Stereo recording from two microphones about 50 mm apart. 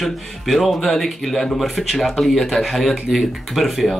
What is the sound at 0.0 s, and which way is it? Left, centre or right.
Speech, centre.